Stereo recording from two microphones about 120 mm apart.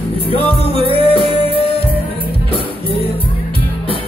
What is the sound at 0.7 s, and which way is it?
Music, 50° right (ahead or behind).